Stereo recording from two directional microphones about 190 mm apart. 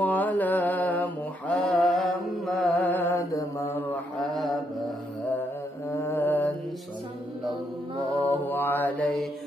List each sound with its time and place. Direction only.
0.0 s mantra: 10° left (ahead or behind)
4.2 s mantra: centre (ahead or behind)
5.9 s music: 10° left (ahead or behind)
8.2 s mantra: 10° left (ahead or behind)